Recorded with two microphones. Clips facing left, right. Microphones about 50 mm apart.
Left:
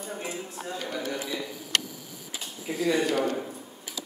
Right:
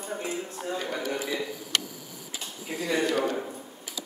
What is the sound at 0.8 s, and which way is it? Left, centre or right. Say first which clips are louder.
Speech: left 1 dB; centre.